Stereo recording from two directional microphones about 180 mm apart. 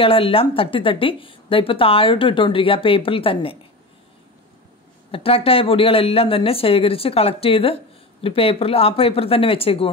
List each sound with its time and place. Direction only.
0.0 s speech: 30° left (ahead or behind)
5.1 s speech: 30° left (ahead or behind)